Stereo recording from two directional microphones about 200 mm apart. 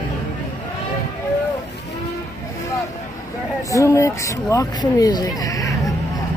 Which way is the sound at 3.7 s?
15° left (ahead or behind).